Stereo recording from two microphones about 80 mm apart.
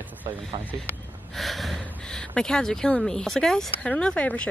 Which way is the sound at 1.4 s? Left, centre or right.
Centre.